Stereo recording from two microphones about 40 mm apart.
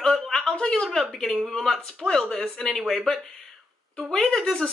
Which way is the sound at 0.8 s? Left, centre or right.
Centre.